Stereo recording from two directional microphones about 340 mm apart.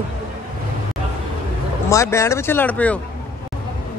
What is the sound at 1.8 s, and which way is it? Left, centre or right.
Speech, centre.